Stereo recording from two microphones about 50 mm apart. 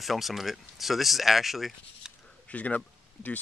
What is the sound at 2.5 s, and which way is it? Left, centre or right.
Speech, left.